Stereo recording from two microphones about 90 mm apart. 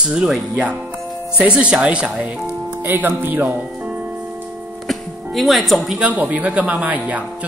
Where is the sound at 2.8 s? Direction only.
20° right (ahead or behind).